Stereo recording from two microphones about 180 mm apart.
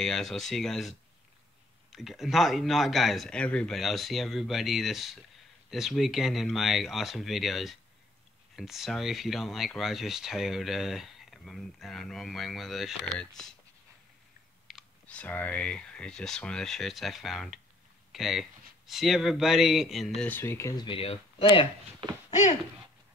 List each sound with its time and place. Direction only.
0.0 s speech: 5° left (ahead or behind)
14.7 s speech: 5° left (ahead or behind)
20.2 s speech: 10° left (ahead or behind); by 21.6 s 30° left (ahead or behind)
22.3 s speech: 40° left (ahead or behind)